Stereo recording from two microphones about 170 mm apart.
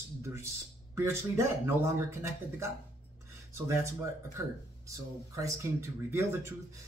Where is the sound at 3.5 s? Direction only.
15° right (ahead or behind).